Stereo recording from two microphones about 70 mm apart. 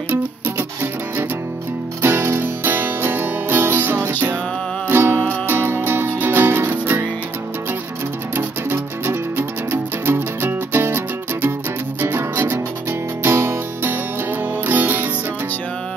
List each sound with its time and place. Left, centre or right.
2.0 s music: right
8.4 s music: right
12.0 s music: right